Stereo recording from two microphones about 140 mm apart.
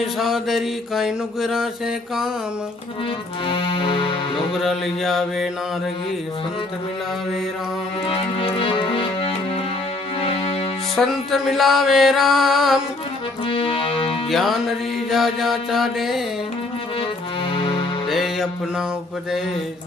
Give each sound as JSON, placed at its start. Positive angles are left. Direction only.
{"t": 0.2, "sound": "mantra", "side_deg": 0}
{"t": 3.4, "sound": "music", "side_deg": 35}
{"t": 4.6, "sound": "mantra", "side_deg": 0}
{"t": 8.1, "sound": "music", "side_deg": 40}
{"t": 11.0, "sound": "mantra", "side_deg": 0}
{"t": 13.5, "sound": "music", "side_deg": 40}
{"t": 14.3, "sound": "mantra", "side_deg": 0}
{"t": 17.6, "sound": "music", "side_deg": 35}
{"t": 18.1, "sound": "music", "side_deg": 0}